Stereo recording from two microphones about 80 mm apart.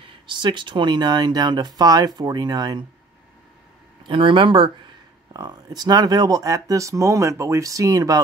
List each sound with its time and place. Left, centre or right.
0.0 s speech: right
4.1 s speech: right
5.3 s speech: right